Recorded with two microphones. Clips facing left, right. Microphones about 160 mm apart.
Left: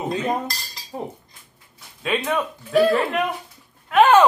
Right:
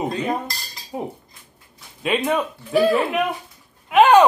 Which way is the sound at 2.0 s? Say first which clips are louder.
Right 2 dB; 20° right (ahead or behind).